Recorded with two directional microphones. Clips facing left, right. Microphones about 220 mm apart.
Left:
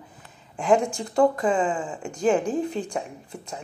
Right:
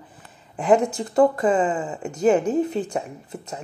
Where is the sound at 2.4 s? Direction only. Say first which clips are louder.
Right 4 dB; 40° right (ahead or behind).